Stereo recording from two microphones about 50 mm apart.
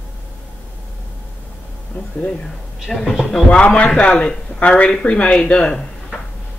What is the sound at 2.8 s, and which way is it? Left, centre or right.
Speech, centre.